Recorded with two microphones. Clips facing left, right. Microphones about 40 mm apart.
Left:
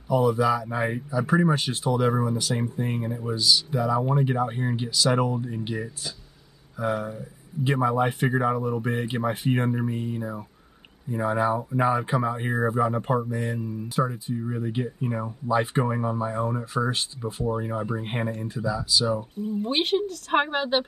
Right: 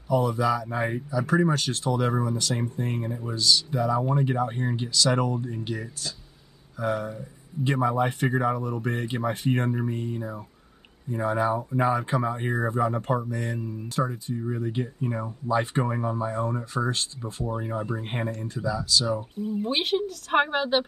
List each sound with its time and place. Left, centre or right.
0.1 s speech: centre
19.6 s speech: centre